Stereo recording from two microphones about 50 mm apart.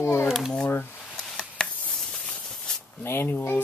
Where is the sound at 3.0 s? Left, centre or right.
Left.